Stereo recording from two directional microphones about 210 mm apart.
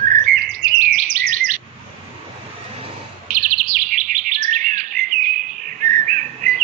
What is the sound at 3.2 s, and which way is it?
Bird, 40° right (ahead or behind).